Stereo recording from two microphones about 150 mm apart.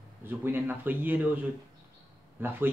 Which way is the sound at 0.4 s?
15° right (ahead or behind).